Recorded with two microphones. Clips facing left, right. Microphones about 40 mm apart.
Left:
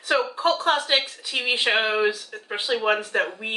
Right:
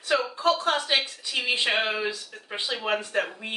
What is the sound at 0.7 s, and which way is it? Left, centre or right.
Speech, left.